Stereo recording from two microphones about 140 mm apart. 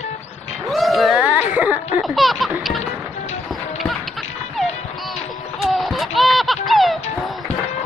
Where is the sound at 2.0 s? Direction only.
Centre (ahead or behind).